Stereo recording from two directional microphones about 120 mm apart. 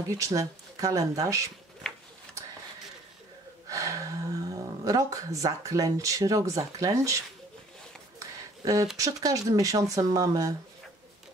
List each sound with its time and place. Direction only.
0.0 s speech: 25° right (ahead or behind)
3.6 s speech: 30° right (ahead or behind)
8.2 s a sound: 30° right (ahead or behind)
8.9 s speech: 30° right (ahead or behind)